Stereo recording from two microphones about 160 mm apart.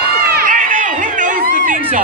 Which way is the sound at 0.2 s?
70° right (ahead or behind).